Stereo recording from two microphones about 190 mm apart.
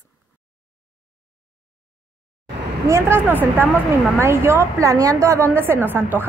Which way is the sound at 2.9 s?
15° right (ahead or behind).